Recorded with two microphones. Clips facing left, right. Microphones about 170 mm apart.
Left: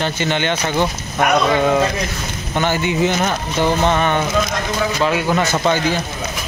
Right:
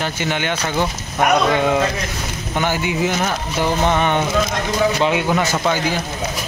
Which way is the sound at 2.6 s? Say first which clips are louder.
Left 2 dB; 10° right (ahead or behind).